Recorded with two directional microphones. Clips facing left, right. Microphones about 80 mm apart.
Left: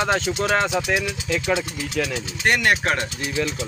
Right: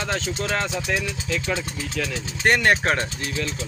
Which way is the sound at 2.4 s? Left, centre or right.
Right.